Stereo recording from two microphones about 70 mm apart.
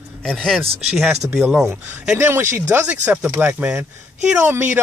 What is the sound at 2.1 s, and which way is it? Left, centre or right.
Speech, right.